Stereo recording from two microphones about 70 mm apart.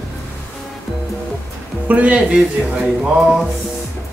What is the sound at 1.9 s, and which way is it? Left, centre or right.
Speech, centre.